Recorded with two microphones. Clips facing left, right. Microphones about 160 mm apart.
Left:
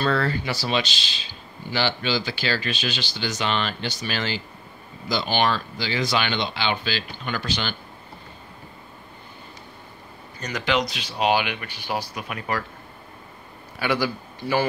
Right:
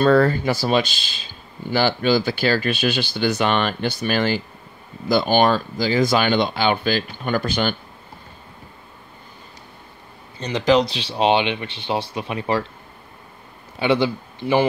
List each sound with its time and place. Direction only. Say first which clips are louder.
0.0 s speech: right 8 dB; 50° right (ahead or behind)
10.6 s speech: right 8 dB; 35° right (ahead or behind)
13.7 s a man's voice: right 5 dB; 25° right (ahead or behind)